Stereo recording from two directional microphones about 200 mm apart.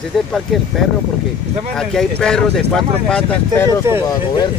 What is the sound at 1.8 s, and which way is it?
Speech, 5° left (ahead or behind).